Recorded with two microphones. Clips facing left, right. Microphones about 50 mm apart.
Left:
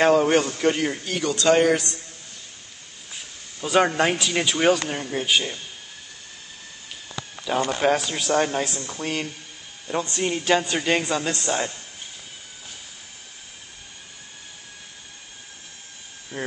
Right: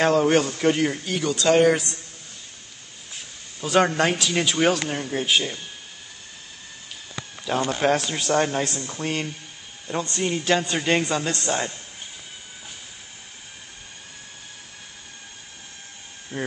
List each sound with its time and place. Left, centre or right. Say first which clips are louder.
0.0 s speech: left 1 dB; centre
3.6 s speech: even; centre
7.4 s speech: even; centre
16.3 s speech: right 1 dB; right